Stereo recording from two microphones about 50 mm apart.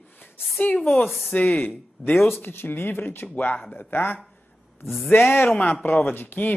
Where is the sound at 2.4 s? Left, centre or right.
Left.